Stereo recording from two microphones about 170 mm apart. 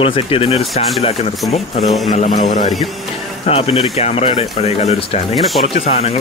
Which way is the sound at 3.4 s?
35° left (ahead or behind).